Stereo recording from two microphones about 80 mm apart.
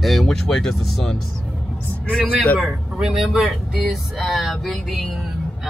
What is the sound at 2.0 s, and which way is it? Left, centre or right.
Speech, centre.